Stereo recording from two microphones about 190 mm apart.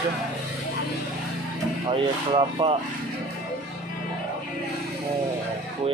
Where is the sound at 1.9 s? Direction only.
25° right (ahead or behind).